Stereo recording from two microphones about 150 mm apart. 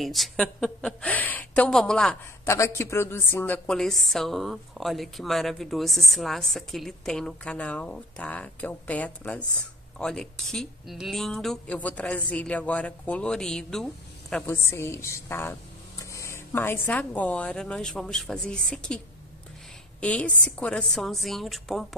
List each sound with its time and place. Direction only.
0.0 s a woman's voice: centre (ahead or behind)
2.4 s a woman's voice: 20° left (ahead or behind); by 13.8 s 5° left (ahead or behind)
14.3 s speech: 15° left (ahead or behind)
20.0 s a woman's voice: 10° left (ahead or behind)